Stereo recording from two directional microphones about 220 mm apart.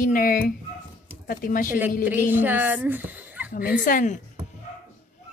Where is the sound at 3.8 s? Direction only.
35° left (ahead or behind).